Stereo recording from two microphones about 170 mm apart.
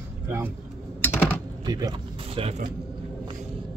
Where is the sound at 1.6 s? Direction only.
25° right (ahead or behind).